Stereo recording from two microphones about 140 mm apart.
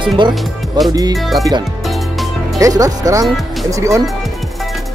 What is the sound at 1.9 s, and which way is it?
Music, centre (ahead or behind).